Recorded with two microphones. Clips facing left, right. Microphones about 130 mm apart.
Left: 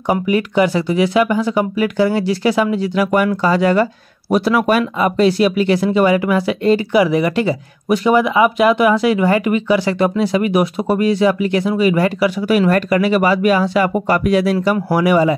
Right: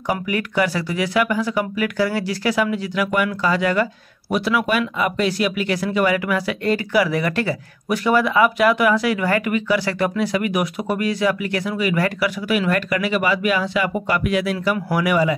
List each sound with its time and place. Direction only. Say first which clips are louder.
0.1 s speech: left 6 dB; 25° left (ahead or behind)